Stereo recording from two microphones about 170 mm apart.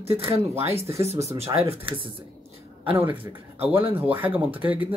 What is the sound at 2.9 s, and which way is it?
Speech, 10° right (ahead or behind).